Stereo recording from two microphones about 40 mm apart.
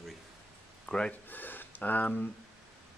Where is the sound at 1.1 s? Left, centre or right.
Left.